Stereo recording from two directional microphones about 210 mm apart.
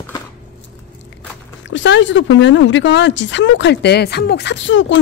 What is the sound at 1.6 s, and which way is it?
Speech, 60° left (ahead or behind).